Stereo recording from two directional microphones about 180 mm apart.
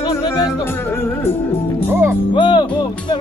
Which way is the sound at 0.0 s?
25° left (ahead or behind).